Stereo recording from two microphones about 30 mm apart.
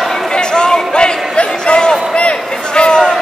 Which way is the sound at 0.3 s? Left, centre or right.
Left.